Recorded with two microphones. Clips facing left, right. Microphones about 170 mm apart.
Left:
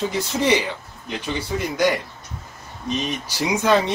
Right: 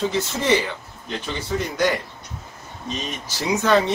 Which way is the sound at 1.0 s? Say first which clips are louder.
Left 2 dB; 15° left (ahead or behind).